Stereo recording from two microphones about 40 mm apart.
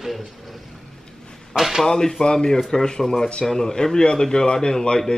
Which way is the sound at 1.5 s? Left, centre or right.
Centre.